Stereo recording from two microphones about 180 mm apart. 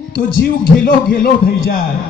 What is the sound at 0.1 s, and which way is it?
A man's voice, 55° left (ahead or behind).